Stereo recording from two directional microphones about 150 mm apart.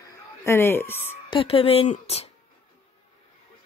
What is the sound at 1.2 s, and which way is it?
Speech, 35° left (ahead or behind).